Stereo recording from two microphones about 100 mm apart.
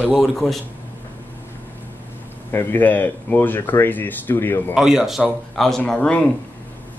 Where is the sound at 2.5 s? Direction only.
20° left (ahead or behind).